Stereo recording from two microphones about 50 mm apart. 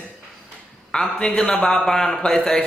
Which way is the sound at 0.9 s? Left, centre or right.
Centre.